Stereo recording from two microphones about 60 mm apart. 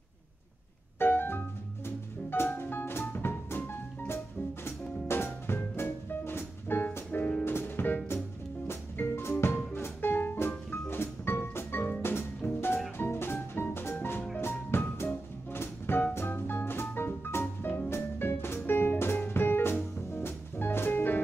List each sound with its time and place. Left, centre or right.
0.9 s music: left